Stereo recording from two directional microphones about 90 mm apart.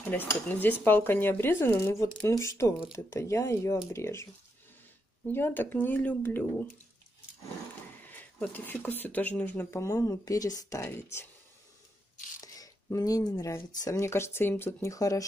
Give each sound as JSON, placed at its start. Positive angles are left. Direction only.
{"t": 0.1, "sound": "speech", "side_deg": 20}
{"t": 5.3, "sound": "speech", "side_deg": 25}
{"t": 8.1, "sound": "speech", "side_deg": 20}
{"t": 9.8, "sound": "speech", "side_deg": 35}
{"t": 12.4, "sound": "speech", "side_deg": 40}